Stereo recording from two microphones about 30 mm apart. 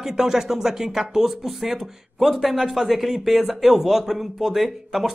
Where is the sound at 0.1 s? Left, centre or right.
Centre.